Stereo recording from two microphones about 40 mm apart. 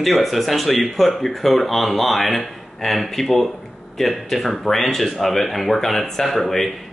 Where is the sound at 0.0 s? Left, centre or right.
Centre.